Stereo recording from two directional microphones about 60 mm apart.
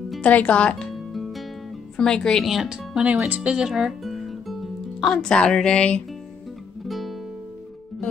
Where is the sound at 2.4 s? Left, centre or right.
Centre.